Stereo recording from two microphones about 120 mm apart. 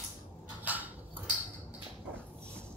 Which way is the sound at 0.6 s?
15° right (ahead or behind).